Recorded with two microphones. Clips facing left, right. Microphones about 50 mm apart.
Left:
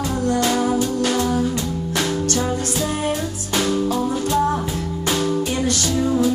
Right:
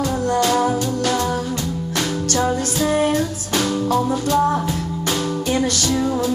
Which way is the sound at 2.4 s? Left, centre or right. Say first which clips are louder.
Right 3 dB; right.